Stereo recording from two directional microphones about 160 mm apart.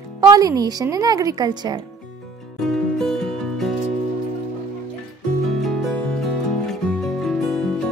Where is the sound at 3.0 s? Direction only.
5° left (ahead or behind).